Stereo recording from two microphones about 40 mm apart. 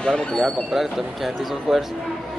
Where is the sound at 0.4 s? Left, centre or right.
Centre.